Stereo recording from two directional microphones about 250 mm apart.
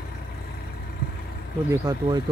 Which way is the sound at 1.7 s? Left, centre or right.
Centre.